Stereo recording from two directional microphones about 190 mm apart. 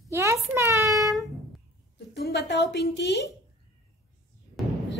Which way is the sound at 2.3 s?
60° left (ahead or behind).